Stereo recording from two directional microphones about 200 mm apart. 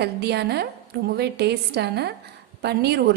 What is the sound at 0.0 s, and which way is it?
A woman's voice, 55° right (ahead or behind).